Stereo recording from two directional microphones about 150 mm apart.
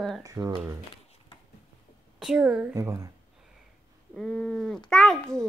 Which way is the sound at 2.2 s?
5° right (ahead or behind).